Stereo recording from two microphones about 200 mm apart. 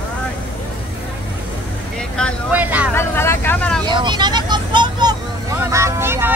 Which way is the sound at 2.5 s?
10° right (ahead or behind).